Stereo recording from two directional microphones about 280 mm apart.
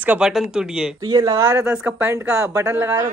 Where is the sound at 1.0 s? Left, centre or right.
Centre.